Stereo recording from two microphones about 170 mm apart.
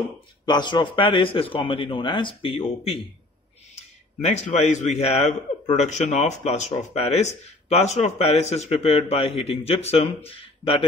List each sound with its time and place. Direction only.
0.5 s a man's voice: 25° left (ahead or behind)